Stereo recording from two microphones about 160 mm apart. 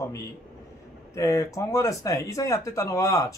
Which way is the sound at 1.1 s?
20° left (ahead or behind).